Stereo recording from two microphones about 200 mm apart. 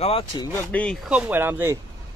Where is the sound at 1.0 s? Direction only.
5° right (ahead or behind).